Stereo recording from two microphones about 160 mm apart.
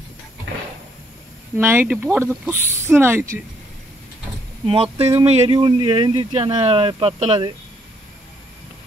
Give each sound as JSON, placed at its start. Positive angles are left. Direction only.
{"t": 0.5, "sound": "sliding door", "side_deg": -90}
{"t": 1.6, "sound": "speech", "side_deg": -15}
{"t": 4.6, "sound": "speech", "side_deg": -35}